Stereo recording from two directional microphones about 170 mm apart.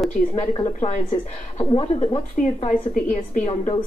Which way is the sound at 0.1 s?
45° left (ahead or behind).